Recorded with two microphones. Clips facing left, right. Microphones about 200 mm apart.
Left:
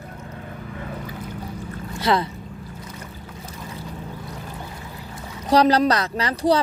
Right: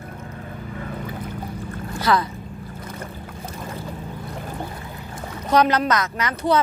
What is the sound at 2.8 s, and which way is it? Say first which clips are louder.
Boat: right 4 dB; 55° right (ahead or behind).